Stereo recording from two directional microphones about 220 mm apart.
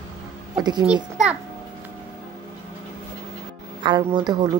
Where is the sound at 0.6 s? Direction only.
20° right (ahead or behind).